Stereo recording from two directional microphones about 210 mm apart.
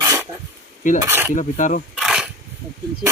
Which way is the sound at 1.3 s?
35° left (ahead or behind).